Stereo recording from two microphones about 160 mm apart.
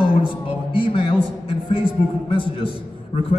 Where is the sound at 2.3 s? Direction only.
35° left (ahead or behind).